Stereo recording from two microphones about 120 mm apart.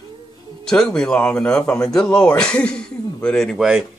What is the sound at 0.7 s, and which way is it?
Speech, 5° left (ahead or behind).